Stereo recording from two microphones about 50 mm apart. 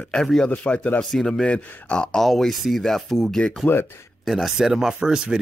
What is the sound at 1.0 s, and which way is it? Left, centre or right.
Speech, centre.